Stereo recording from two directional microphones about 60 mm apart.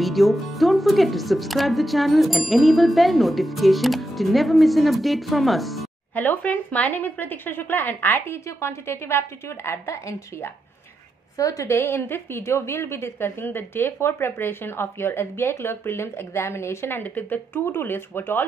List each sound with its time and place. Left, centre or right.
0.0 s speech: centre
6.1 s a woman's voice: left
8.5 s a woman's voice: left
11.3 s a woman's voice: left
11.6 s a woman's voice: left